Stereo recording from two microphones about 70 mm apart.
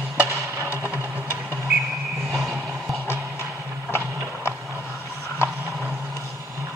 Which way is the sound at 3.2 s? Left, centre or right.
Right.